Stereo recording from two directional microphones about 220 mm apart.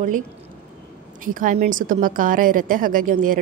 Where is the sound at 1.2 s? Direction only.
40° right (ahead or behind).